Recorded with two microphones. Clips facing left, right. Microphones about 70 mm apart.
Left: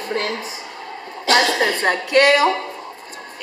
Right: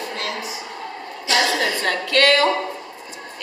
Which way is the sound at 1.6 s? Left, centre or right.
Left.